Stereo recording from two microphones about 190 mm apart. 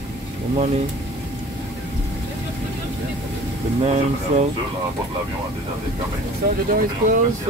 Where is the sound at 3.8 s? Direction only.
35° right (ahead or behind).